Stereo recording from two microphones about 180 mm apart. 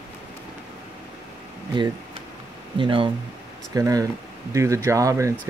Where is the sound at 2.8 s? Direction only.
30° right (ahead or behind).